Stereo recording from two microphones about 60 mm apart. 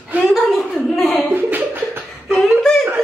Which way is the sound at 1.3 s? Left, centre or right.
Right.